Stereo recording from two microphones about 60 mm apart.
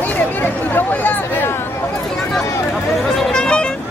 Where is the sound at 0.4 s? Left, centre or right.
Left.